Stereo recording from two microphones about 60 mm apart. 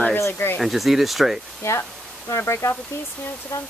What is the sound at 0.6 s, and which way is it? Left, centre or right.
Speech, centre.